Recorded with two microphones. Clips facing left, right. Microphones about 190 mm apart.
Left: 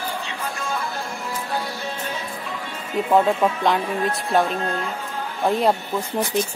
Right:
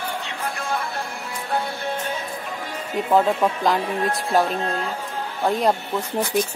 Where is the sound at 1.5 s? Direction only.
55° right (ahead or behind).